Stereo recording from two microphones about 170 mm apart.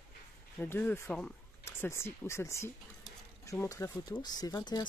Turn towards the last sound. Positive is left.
turn(degrees=25)  # may be behind; listen again after turning